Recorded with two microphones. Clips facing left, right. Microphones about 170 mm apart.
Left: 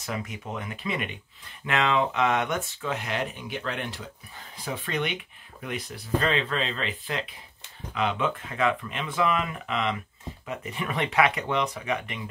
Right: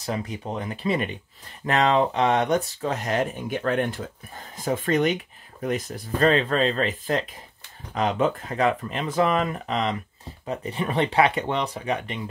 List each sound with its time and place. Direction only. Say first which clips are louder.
0.0 s speech: right 4 dB; 35° right (ahead or behind)